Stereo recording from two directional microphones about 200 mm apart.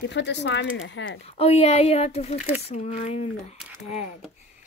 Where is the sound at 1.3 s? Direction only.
30° left (ahead or behind).